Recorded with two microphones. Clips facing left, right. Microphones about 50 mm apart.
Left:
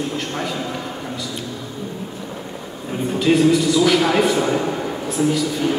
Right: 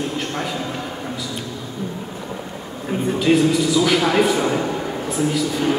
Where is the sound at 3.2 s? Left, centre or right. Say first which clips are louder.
Left 2 dB; centre.